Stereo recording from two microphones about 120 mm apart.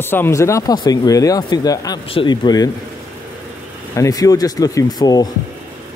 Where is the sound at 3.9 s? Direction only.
30° left (ahead or behind).